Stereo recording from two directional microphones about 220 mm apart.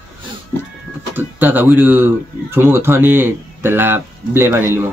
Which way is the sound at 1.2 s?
10° right (ahead or behind).